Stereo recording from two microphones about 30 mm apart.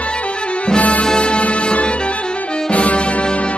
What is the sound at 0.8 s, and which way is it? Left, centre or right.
Music, left.